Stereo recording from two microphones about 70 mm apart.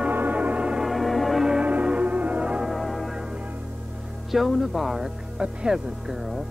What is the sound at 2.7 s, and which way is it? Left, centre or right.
Music, centre.